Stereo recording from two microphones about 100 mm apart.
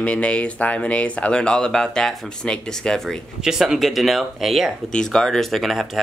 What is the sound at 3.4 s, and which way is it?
Speech, 5° right (ahead or behind).